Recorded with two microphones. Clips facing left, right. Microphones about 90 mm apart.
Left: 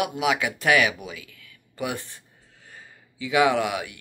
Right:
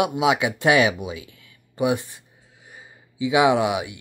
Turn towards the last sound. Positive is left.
turn(degrees=-20)  # may be behind; listen again after turning